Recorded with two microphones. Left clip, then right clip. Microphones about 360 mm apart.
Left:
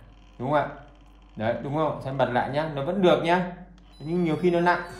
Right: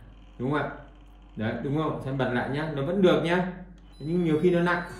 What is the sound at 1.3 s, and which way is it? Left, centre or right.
A man's voice, centre.